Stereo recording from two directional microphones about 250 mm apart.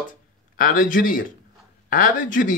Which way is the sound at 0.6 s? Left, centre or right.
Left.